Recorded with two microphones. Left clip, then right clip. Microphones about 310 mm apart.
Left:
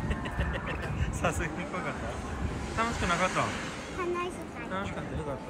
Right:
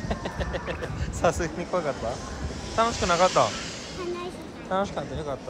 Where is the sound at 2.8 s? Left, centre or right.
Centre.